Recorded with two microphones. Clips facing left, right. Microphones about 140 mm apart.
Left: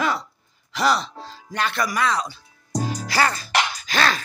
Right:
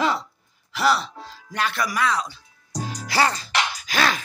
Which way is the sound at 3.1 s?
25° right (ahead or behind).